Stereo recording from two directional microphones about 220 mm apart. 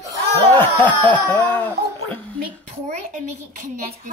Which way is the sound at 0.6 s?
5° left (ahead or behind).